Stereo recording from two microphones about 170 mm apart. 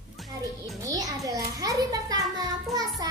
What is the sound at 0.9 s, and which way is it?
A child's voice, 20° right (ahead or behind).